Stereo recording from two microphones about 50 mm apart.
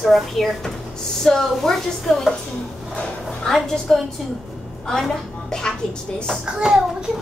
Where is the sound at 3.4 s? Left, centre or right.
Centre.